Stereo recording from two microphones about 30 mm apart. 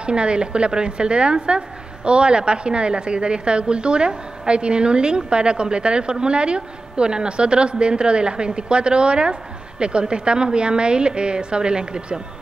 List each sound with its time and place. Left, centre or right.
0.0 s a woman's voice: right